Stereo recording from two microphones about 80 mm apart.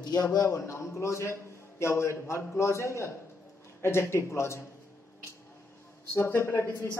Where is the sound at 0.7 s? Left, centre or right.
Left.